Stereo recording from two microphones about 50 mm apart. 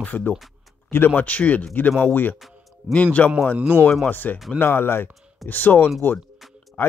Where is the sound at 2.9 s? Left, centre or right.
Left.